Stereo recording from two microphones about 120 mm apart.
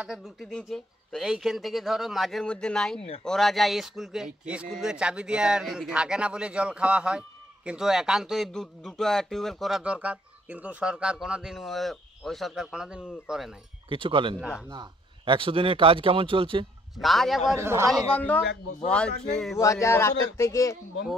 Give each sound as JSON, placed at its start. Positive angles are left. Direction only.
{"t": 0.0, "sound": "speech", "side_deg": -5}
{"t": 13.8, "sound": "speech", "side_deg": -45}
{"t": 16.9, "sound": "speech", "side_deg": 0}
{"t": 17.6, "sound": "a man's voice", "side_deg": -20}
{"t": 18.9, "sound": "speech", "side_deg": 5}
{"t": 19.6, "sound": "speech", "side_deg": 25}